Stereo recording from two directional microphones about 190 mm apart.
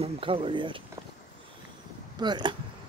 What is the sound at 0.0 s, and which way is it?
Speech, 30° right (ahead or behind).